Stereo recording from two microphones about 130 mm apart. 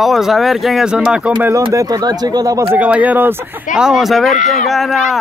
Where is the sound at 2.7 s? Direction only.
10° right (ahead or behind).